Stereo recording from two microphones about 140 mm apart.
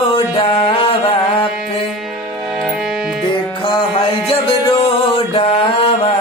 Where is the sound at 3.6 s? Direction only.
35° left (ahead or behind).